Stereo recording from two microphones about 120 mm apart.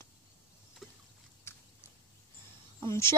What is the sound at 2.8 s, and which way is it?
Speech, 20° left (ahead or behind).